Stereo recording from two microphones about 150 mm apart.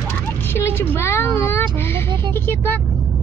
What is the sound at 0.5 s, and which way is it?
A child's voice, 15° left (ahead or behind).